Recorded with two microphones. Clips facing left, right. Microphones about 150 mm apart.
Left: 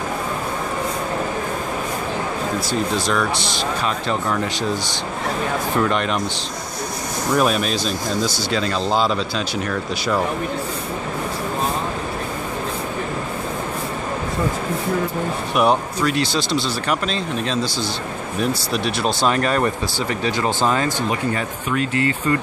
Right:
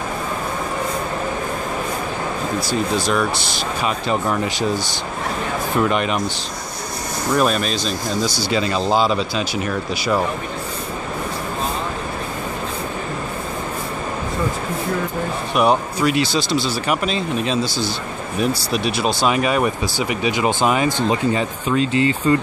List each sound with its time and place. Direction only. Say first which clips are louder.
2.7 s speech: right 2 dB; 5° right (ahead or behind)
5.8 s speech: right 2 dB; 5° right (ahead or behind)
7.3 s speech: even; 5° left (ahead or behind)
15.5 s speech: right 1 dB; centre (ahead or behind); by 22.4 s 25° right (ahead or behind)